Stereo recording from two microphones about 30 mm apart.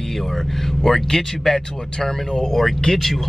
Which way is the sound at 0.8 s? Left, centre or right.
Centre.